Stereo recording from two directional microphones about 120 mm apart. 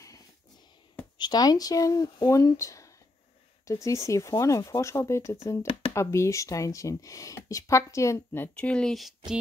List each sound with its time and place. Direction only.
1.1 s speech: 35° left (ahead or behind)
5.7 s a sound: 50° left (ahead or behind)
5.9 s speech: 25° left (ahead or behind); by 9.1 s 5° left (ahead or behind)